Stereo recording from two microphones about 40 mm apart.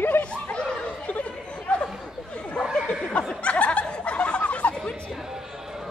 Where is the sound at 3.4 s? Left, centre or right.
Left.